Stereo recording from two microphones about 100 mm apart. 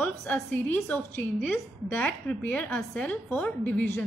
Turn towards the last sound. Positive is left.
turn(degrees=15)  # may be behind; listen again after turning